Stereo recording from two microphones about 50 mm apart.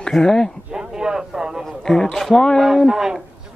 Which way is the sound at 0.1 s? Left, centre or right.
Centre.